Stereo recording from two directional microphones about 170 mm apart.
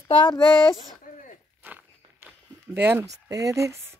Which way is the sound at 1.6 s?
10° right (ahead or behind).